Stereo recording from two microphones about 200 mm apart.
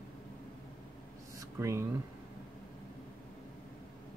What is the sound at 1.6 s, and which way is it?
Speech, 15° right (ahead or behind).